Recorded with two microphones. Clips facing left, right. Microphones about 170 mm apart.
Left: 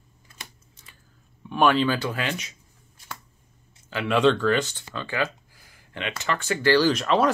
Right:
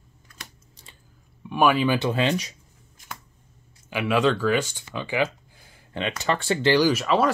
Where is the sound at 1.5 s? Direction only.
10° right (ahead or behind).